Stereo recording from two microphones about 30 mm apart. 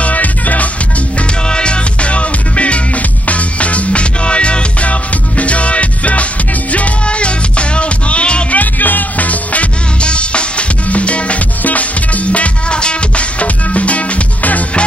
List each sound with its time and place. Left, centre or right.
0.0 s music: left
1.5 s music: left
8.5 s music: left
10.0 s drum kit: left
10.9 s music: left
11.6 s music: left
12.3 s music: left
13.4 s music: left